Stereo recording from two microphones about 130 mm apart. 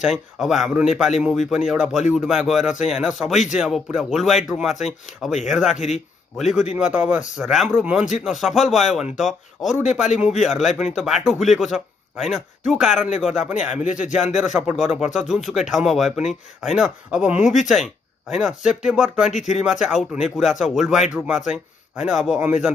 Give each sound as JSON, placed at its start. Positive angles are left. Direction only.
{"t": 0.0, "sound": "speech", "side_deg": 0}
{"t": 6.8, "sound": "speech", "side_deg": -10}
{"t": 13.8, "sound": "speech", "side_deg": 70}
{"t": 14.3, "sound": "speech", "side_deg": -5}
{"t": 19.3, "sound": "speech", "side_deg": 65}
{"t": 19.6, "sound": "a man's voice", "side_deg": -5}